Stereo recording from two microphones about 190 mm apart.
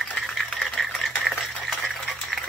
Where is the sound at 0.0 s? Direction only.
5° left (ahead or behind).